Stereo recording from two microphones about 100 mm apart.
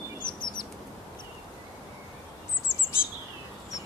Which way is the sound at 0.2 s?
50° left (ahead or behind).